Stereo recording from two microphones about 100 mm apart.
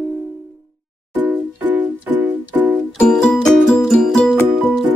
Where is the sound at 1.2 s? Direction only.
15° right (ahead or behind).